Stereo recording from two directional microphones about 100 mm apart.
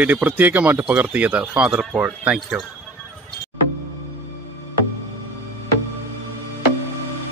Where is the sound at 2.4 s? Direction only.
Centre (ahead or behind).